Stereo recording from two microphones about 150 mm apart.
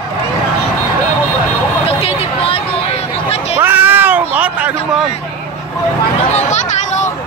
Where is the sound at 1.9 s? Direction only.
40° left (ahead or behind).